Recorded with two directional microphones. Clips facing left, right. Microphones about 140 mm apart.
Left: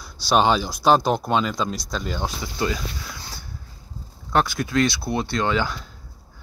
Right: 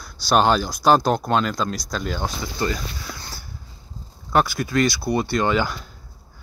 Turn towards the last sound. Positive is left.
turn(degrees=-5)  # may be behind; listen again after turning